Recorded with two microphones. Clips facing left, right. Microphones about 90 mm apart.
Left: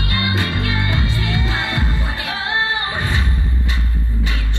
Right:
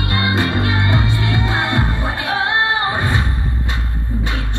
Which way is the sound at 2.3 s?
40° right (ahead or behind).